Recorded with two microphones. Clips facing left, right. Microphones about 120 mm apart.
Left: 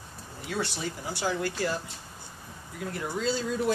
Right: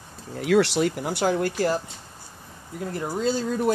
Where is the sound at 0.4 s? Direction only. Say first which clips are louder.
Right 13 dB; 90° right; by 1.5 s 55° right (ahead or behind).